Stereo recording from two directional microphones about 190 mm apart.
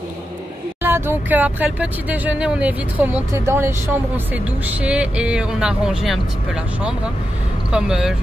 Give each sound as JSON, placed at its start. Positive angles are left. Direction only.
{"t": 0.8, "sound": "speech", "side_deg": -10}
{"t": 7.7, "sound": "speech", "side_deg": -5}